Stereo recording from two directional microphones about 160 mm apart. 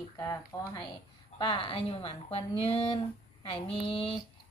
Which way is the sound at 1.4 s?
30° left (ahead or behind).